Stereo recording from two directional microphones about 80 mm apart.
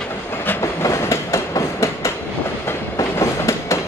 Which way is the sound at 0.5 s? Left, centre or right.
Left.